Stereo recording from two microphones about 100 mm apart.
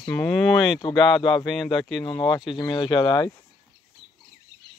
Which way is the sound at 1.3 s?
Centre (ahead or behind).